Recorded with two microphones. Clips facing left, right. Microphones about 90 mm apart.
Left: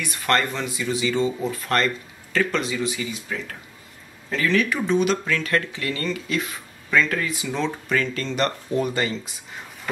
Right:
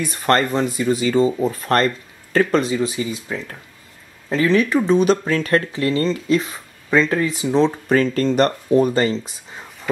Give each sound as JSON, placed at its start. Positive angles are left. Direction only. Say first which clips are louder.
{"t": 0.0, "sound": "speech", "louder": "right 5 dB", "side_deg": -35}